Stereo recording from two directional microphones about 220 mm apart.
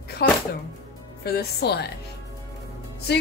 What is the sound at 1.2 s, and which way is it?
Speech, 45° left (ahead or behind).